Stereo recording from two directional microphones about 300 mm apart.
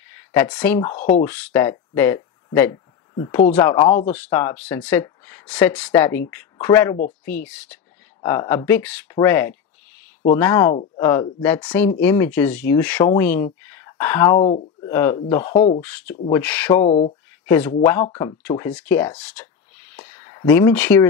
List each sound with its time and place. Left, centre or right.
0.4 s speech: centre
0.9 s speech: left
1.2 s speech: centre
15.4 s speech: left
15.8 s speech: centre
16.8 s speech: left
17.8 s speech: centre